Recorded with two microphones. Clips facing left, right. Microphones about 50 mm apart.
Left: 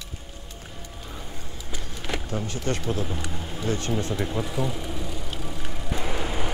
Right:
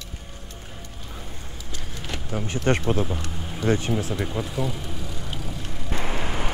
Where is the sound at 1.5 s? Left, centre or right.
Centre.